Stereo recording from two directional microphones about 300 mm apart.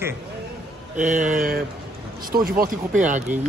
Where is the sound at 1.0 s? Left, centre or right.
Right.